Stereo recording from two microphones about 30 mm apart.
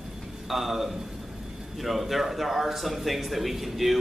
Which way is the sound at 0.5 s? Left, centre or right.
Centre.